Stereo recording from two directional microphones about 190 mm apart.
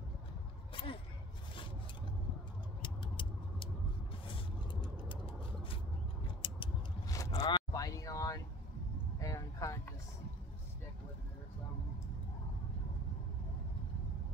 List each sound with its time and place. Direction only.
2.8 s vehicle: 25° left (ahead or behind)
4.8 s vehicle: 25° left (ahead or behind)
6.4 s a sound: 20° left (ahead or behind)